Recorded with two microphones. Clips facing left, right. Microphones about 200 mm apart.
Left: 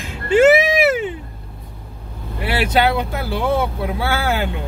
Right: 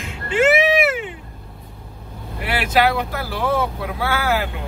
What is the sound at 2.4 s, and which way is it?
Speech, 25° left (ahead or behind).